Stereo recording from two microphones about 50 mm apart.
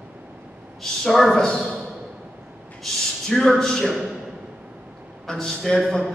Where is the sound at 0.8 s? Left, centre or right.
Centre.